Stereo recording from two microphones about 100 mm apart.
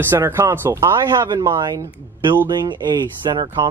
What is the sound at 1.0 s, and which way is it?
Speech, 45° right (ahead or behind).